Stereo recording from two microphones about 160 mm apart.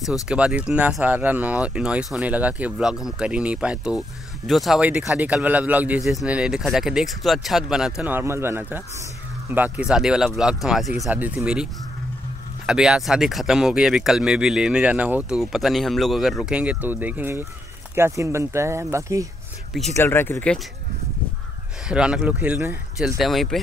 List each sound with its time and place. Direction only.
0.3 s speech: 5° right (ahead or behind)
20.0 s speech: 15° left (ahead or behind)
21.8 s speech: 5° right (ahead or behind)
22.9 s speech: centre (ahead or behind)